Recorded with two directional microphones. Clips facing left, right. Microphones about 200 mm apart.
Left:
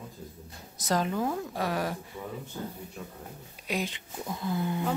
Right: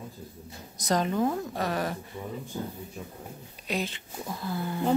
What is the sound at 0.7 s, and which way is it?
Speech, 5° left (ahead or behind).